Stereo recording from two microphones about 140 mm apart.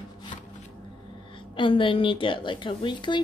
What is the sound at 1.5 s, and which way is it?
A woman's voice, 35° left (ahead or behind).